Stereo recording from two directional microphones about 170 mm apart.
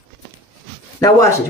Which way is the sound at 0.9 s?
20° left (ahead or behind).